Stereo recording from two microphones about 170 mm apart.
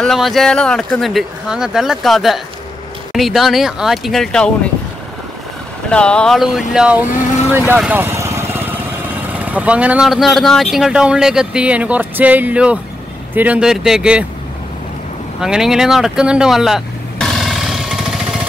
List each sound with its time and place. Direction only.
0.0 s speech: centre (ahead or behind)
5.9 s speech: 5° left (ahead or behind)
7.1 s vehicle: 50° left (ahead or behind)
7.5 s vehicle: 10° right (ahead or behind)
9.4 s speech: 10° right (ahead or behind)
15.4 s vehicle: 5° right (ahead or behind)